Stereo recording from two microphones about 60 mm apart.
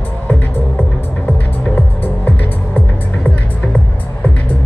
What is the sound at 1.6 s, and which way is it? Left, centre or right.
Music, left.